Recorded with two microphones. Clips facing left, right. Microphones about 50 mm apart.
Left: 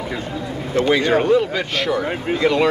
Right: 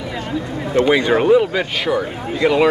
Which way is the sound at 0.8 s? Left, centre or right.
Centre.